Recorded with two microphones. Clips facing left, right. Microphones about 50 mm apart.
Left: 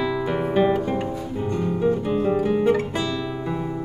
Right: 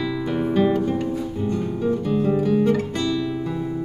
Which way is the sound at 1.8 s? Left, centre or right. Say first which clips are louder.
Even; centre.